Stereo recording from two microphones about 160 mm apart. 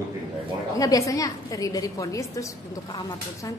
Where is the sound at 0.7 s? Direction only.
20° left (ahead or behind).